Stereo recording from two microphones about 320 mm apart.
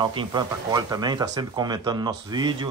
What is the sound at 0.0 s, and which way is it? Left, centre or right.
Speech, centre.